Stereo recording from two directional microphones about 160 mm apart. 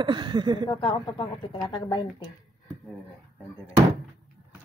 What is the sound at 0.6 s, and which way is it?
Speech, 30° left (ahead or behind).